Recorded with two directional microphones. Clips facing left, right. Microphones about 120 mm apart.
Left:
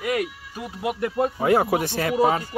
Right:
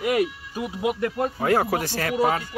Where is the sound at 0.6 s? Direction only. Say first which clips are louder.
Right 2 dB; 10° right (ahead or behind).